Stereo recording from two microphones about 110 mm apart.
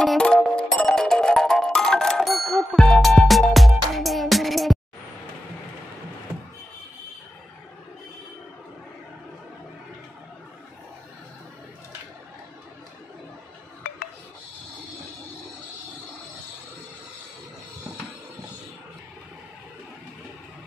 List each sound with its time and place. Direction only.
0.0 s music: 5° left (ahead or behind)